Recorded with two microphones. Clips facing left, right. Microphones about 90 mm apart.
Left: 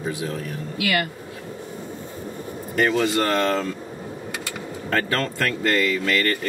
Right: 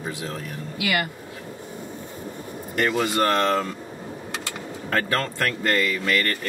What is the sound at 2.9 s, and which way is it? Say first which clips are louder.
Speech: right 2 dB; 10° right (ahead or behind).